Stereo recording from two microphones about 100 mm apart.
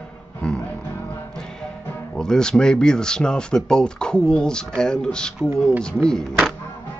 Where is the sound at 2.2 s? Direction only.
5° left (ahead or behind).